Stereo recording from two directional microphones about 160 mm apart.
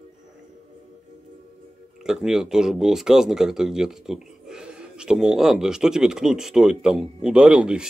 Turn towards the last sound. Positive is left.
turn(degrees=-5)  # may be behind; listen again after turning